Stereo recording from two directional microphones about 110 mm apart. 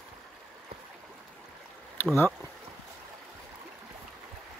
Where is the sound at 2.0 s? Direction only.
20° left (ahead or behind).